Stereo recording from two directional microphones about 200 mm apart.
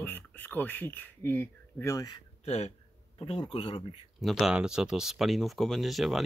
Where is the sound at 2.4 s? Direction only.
35° left (ahead or behind).